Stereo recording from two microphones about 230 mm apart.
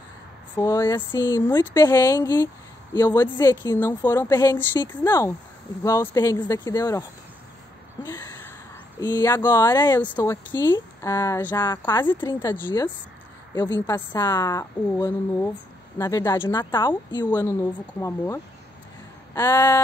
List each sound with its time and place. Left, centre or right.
0.6 s speech: centre
9.0 s speech: centre
12.6 s speech: centre